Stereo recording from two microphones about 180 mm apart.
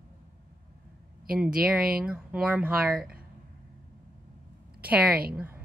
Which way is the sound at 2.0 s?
5° right (ahead or behind).